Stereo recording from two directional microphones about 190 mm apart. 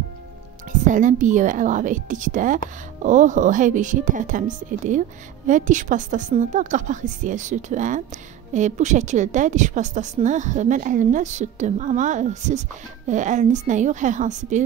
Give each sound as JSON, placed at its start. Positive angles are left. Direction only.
{"t": 0.8, "sound": "a woman's voice", "side_deg": -40}